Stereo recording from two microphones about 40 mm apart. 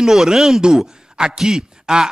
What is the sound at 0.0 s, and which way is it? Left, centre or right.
A man's voice, centre.